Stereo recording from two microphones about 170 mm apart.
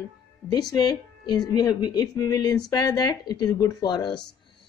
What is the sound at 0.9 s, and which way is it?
Speech, 25° left (ahead or behind).